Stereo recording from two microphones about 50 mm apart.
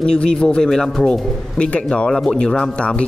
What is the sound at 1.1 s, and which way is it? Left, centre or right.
A man's voice, left.